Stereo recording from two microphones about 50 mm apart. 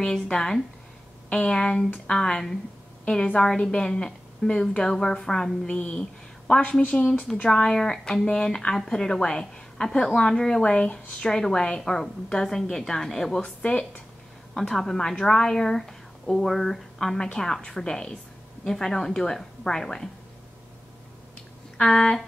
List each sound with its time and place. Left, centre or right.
0.0 s a woman's voice: centre
13.6 s speech: left
14.5 s a woman's voice: centre
21.7 s a woman's voice: centre